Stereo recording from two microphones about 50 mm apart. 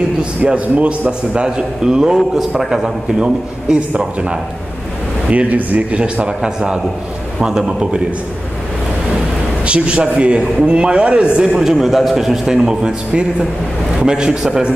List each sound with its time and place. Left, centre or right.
0.4 s a man's voice: centre
5.3 s a man's voice: right
9.7 s a man's voice: right